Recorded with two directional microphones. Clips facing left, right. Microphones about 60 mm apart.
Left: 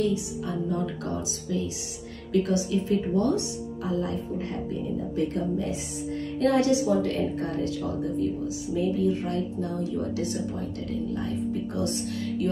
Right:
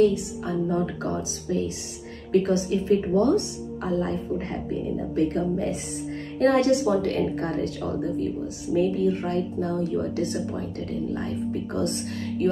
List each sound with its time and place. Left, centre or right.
0.0 s a woman's voice: right
0.7 s a woman's voice: right